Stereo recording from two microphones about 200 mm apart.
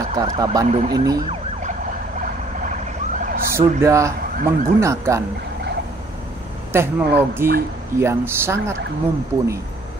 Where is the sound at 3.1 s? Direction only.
40° right (ahead or behind).